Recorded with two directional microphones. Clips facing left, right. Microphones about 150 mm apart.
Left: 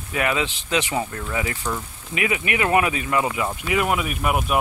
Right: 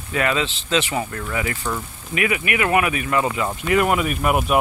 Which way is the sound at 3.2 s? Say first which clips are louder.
Right 1 dB; 10° left (ahead or behind).